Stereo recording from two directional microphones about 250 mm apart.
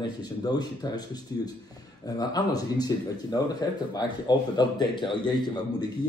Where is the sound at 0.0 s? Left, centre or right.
Centre.